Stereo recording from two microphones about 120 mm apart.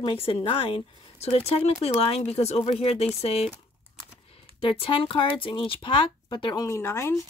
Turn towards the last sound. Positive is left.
turn(degrees=25)  # may be behind; listen again after turning